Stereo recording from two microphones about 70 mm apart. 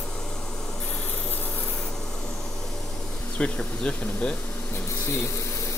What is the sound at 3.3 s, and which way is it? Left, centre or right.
Speech, centre.